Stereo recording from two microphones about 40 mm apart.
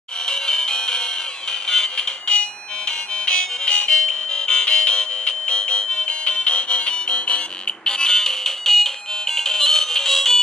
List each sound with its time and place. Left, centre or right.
0.3 s music: centre